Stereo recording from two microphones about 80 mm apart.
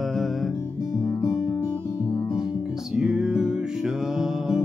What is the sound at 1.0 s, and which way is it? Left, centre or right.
Music, left.